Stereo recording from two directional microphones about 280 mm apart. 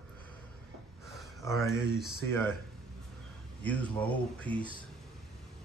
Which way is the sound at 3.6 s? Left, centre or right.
Centre.